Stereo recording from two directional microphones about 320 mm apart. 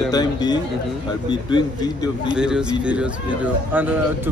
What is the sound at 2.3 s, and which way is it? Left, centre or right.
A man's voice, centre.